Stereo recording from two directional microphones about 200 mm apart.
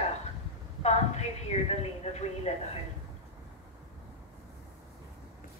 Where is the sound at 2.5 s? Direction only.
35° left (ahead or behind).